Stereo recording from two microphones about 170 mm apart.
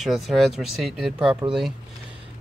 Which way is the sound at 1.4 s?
25° right (ahead or behind).